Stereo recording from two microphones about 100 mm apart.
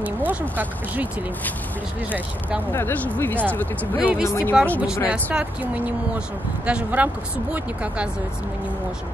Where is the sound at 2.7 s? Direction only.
20° left (ahead or behind).